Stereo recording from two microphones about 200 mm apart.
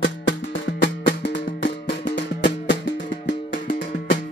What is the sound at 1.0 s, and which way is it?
Music, 60° left (ahead or behind).